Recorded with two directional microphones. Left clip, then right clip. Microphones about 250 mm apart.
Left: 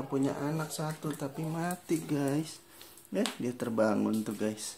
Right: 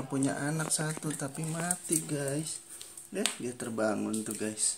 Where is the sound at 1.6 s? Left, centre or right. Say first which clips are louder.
Left 1 dB; centre.